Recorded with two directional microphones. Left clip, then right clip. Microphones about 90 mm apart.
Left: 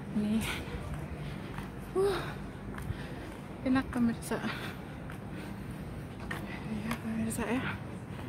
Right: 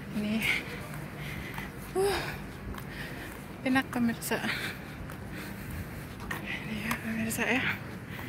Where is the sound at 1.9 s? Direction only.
10° left (ahead or behind).